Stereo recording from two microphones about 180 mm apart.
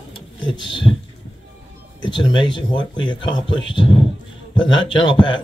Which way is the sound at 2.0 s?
25° left (ahead or behind).